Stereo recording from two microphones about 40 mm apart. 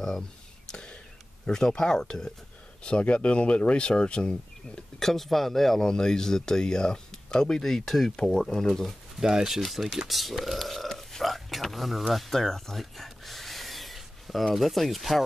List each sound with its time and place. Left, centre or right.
0.7 s a sound: centre
1.4 s speech: centre
2.8 s speech: left
9.2 s speech: centre
9.6 s speech: centre
10.0 s a sound: centre
14.5 s speech: centre